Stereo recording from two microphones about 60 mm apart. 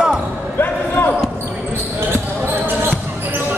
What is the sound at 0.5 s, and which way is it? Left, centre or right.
Basketball bounce, left.